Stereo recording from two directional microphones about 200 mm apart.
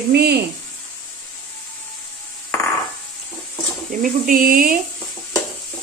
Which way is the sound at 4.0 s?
45° right (ahead or behind).